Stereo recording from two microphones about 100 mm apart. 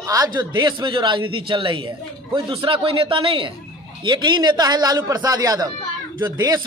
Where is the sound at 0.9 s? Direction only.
55° right (ahead or behind).